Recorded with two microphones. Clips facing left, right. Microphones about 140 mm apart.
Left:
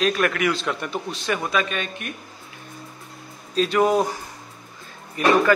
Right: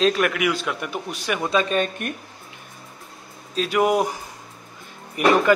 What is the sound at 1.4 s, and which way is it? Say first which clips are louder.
Speech: right 4 dB; 30° right (ahead or behind).